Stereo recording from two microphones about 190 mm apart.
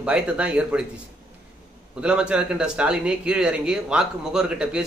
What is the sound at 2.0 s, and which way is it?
Speech, 5° right (ahead or behind).